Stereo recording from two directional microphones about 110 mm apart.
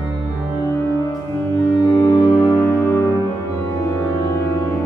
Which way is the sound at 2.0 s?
25° left (ahead or behind).